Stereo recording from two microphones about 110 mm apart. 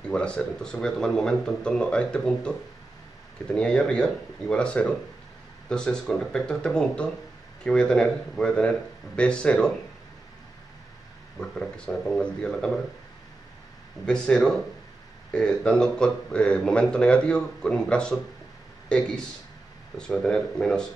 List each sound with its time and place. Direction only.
0.1 s speech: 10° left (ahead or behind)
3.5 s speech: 10° left (ahead or behind)
11.3 s speech: 5° left (ahead or behind)
14.0 s speech: 5° left (ahead or behind)